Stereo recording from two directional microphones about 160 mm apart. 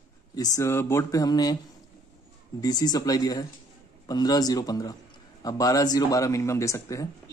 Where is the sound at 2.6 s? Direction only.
25° left (ahead or behind).